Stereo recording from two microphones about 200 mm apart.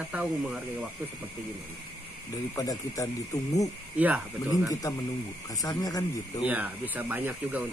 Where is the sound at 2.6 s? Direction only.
15° left (ahead or behind).